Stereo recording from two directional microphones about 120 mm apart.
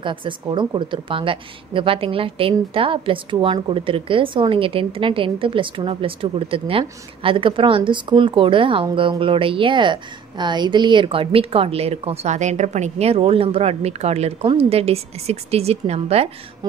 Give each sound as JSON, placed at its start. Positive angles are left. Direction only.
{"t": 0.0, "sound": "a woman's voice", "side_deg": -45}